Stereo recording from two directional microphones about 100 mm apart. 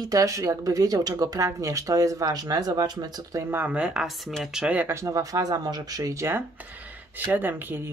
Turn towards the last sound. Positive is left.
turn(degrees=-20)  # may be behind; listen again after turning